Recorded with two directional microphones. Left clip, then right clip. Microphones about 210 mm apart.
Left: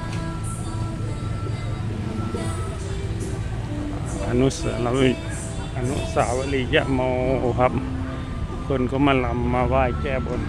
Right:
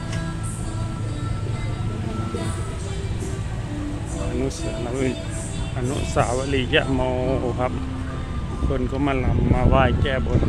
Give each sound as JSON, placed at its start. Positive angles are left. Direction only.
{"t": 4.4, "sound": "speech", "side_deg": 35}
{"t": 6.1, "sound": "speech", "side_deg": 0}
{"t": 7.4, "sound": "speech", "side_deg": 25}
{"t": 8.7, "sound": "speech", "side_deg": 20}
{"t": 9.7, "sound": "speech", "side_deg": 0}